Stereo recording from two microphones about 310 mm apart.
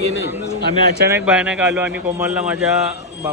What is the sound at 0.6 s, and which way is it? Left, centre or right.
Speech, right.